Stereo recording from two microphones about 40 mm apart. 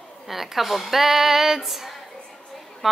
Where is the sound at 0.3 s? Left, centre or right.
Centre.